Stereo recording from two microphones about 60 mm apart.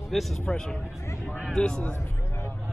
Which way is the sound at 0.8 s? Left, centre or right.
Left.